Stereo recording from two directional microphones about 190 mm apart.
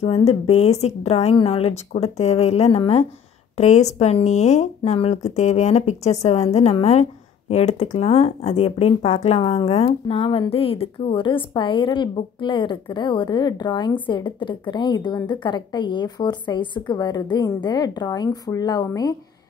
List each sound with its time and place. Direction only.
0.0 s a woman's voice: 35° left (ahead or behind)